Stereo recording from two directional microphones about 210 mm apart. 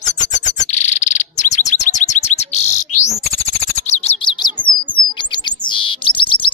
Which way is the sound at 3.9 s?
30° left (ahead or behind).